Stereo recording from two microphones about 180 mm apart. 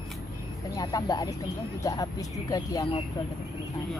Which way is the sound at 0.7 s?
20° left (ahead or behind).